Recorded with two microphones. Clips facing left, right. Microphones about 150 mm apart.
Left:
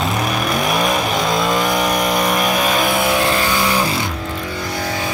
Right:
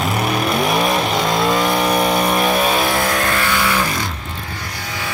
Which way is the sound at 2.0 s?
Centre (ahead or behind).